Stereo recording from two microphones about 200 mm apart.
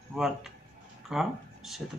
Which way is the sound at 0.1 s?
Centre (ahead or behind).